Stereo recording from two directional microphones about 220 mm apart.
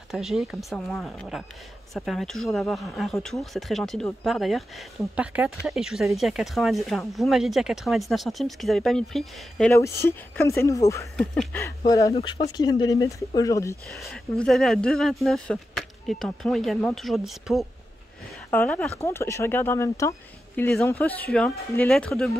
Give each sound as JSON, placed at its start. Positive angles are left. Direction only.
{"t": 0.1, "sound": "speech", "side_deg": 0}
{"t": 9.8, "sound": "speech", "side_deg": 10}
{"t": 11.1, "sound": "speech", "side_deg": 0}
{"t": 11.9, "sound": "speech", "side_deg": 15}
{"t": 13.8, "sound": "speech", "side_deg": 0}